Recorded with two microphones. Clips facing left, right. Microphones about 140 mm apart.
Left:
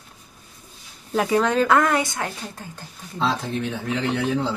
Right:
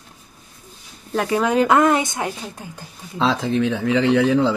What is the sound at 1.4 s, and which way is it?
Speech, 15° right (ahead or behind).